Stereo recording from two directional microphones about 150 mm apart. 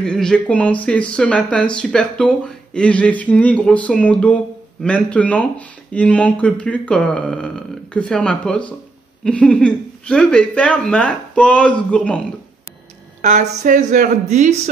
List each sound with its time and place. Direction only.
0.0 s speech: 5° left (ahead or behind)
13.2 s speech: 50° right (ahead or behind)